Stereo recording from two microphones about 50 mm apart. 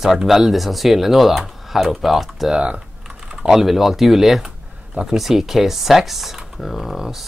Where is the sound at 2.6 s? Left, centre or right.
Right.